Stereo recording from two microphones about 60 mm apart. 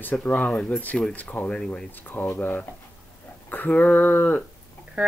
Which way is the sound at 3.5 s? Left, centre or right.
Left.